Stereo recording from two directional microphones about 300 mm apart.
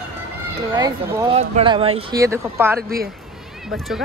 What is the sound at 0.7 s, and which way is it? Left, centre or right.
Speech, centre.